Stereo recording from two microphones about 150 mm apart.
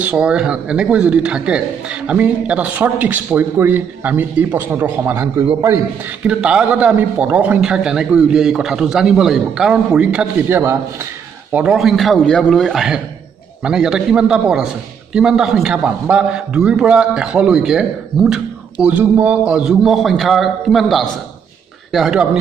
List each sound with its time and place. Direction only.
0.0 s a man's voice: 10° right (ahead or behind)
10.6 s a man's voice: 20° right (ahead or behind)
11.5 s a man's voice: 5° right (ahead or behind)